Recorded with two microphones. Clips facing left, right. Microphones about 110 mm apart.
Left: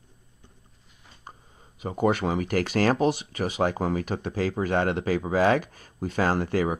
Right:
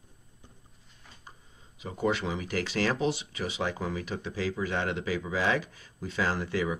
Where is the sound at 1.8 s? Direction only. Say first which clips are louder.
Left 5 dB; 50° left (ahead or behind).